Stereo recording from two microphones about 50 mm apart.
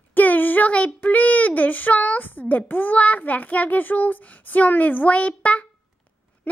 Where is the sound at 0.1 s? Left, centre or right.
Left.